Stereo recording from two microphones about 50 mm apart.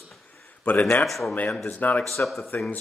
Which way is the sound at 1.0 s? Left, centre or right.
Centre.